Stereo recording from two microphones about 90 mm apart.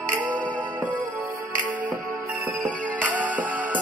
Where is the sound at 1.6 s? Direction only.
20° right (ahead or behind).